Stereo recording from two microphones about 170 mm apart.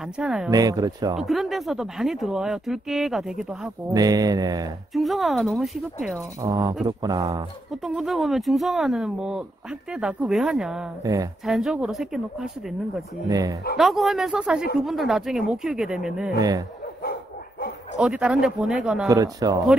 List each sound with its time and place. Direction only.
0.0 s speech: 5° right (ahead or behind)
0.5 s mantra: 20° right (ahead or behind)
1.1 s speech: centre (ahead or behind)
3.9 s mantra: 20° right (ahead or behind)
4.9 s speech: centre (ahead or behind)
6.1 s mantra: 20° right (ahead or behind)
7.8 s speech: centre (ahead or behind)
13.3 s mantra: 20° right (ahead or behind)
13.7 s speech: centre (ahead or behind)
16.3 s mantra: 20° right (ahead or behind)
17.9 s speech: 5° right (ahead or behind)
19.0 s mantra: 20° right (ahead or behind)